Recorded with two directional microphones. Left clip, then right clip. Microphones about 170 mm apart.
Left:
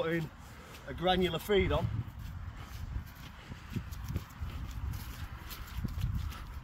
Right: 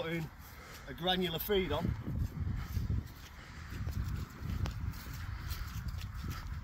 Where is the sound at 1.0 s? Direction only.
5° left (ahead or behind).